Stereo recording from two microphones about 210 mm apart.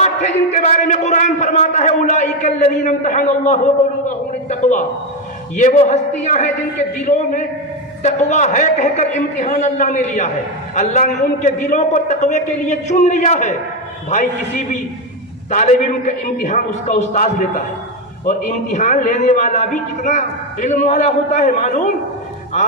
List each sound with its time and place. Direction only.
0.0 s a man's voice: 35° left (ahead or behind)
15.5 s a man's voice: 35° left (ahead or behind)